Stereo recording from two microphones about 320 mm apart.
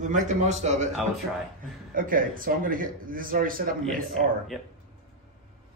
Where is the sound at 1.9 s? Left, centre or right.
Right.